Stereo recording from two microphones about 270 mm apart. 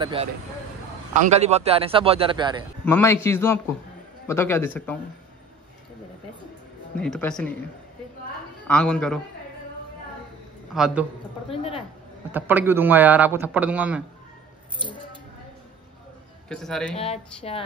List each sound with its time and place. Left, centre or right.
0.0 s speech: right
2.8 s a man's voice: centre
7.0 s speech: centre
8.6 s speech: centre
10.7 s a man's voice: centre
11.4 s speech: left
12.3 s a man's voice: centre
16.4 s speech: centre
16.9 s speech: left